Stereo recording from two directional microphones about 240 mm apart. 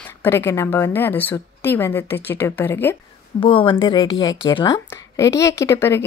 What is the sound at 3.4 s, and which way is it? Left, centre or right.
A woman's voice, left.